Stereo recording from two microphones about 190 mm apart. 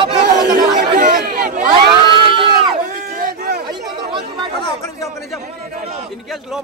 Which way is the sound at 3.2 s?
55° right (ahead or behind).